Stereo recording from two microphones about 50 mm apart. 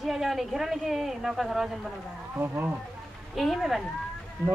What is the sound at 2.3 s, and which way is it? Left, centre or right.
Speech, right.